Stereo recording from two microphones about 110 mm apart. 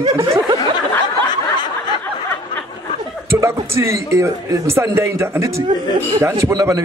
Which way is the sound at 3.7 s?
25° right (ahead or behind).